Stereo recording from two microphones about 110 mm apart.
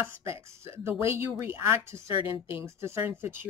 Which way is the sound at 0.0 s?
25° right (ahead or behind).